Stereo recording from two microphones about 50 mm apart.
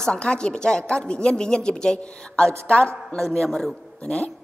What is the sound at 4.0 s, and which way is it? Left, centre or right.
Speech, centre.